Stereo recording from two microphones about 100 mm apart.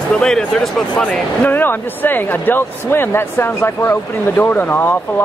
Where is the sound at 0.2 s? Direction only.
5° left (ahead or behind).